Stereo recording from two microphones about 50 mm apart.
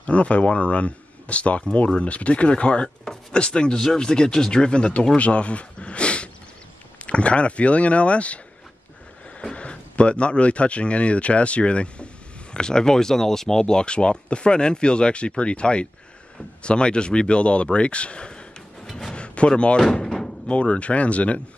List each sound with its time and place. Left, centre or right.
0.0 s speech: left
9.4 s speech: left
18.9 s music: centre
19.1 s a sound: left
19.8 s door: centre
20.4 s speech: left